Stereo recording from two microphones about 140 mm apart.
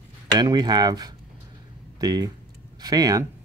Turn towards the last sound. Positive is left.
turn(degrees=-30)  # may be behind; listen again after turning